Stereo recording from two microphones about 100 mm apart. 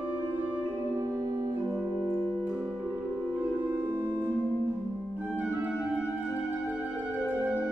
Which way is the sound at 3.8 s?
25° right (ahead or behind).